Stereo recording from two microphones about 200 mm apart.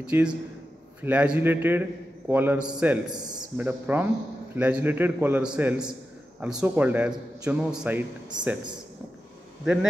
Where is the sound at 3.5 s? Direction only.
10° right (ahead or behind).